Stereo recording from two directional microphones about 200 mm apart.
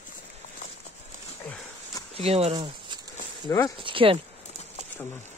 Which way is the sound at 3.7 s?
25° right (ahead or behind).